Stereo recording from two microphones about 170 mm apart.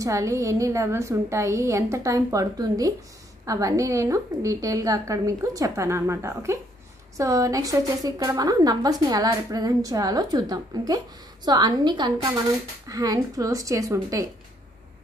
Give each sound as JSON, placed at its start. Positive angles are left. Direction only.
{"t": 0.0, "sound": "a woman's voice", "side_deg": -15}